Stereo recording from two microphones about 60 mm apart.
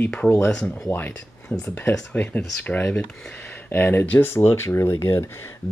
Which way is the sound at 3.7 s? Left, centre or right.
Left.